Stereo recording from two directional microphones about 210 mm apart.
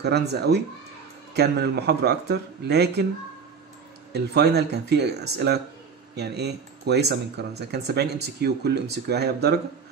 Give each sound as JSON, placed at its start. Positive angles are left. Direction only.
{"t": 0.0, "sound": "speech", "side_deg": -50}
{"t": 4.1, "sound": "speech", "side_deg": -50}